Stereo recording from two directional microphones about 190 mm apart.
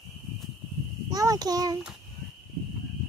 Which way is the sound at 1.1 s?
20° right (ahead or behind).